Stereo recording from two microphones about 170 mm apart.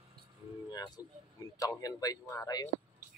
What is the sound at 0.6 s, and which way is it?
Music, 25° left (ahead or behind).